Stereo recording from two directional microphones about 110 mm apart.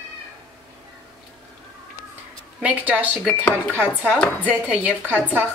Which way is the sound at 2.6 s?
15° right (ahead or behind).